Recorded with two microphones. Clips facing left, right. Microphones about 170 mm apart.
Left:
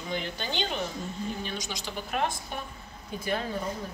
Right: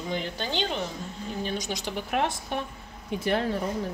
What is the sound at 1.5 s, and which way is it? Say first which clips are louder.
A woman's voice: right 4 dB; 60° right (ahead or behind).